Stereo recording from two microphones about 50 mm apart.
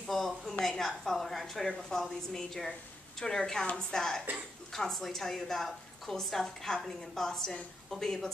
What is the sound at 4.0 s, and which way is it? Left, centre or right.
A woman's voice, centre.